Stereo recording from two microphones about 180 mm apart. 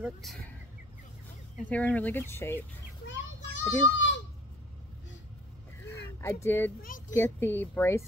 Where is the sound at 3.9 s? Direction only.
90° left.